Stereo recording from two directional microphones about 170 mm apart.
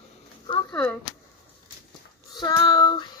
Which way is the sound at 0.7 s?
5° left (ahead or behind).